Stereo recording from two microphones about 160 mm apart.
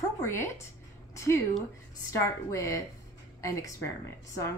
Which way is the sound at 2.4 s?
20° left (ahead or behind).